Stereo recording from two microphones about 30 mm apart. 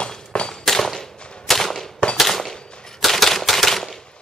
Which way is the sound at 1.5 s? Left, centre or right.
Centre.